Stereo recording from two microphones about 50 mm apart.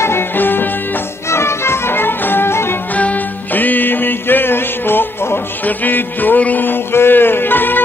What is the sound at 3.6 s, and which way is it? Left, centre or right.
Music, left.